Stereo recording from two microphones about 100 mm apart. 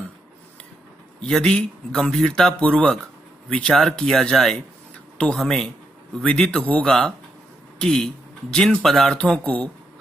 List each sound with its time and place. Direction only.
1.2 s a man's voice: 5° left (ahead or behind)